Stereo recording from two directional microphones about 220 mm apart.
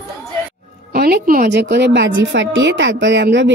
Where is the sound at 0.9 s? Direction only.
45° right (ahead or behind).